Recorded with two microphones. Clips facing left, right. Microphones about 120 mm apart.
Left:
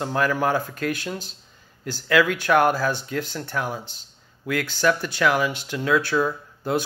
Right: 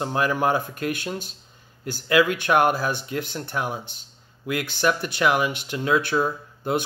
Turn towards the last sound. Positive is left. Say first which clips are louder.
# even
turn(degrees=-20)  # may be behind; listen again after turning